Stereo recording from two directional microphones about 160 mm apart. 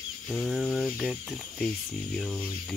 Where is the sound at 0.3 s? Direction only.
Centre (ahead or behind).